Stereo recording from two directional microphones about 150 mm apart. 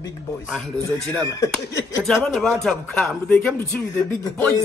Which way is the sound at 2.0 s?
Centre (ahead or behind).